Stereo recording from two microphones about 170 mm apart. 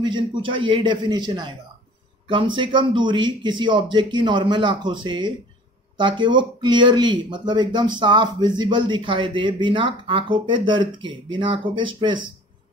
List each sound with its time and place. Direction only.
0.0 s speech: 25° right (ahead or behind)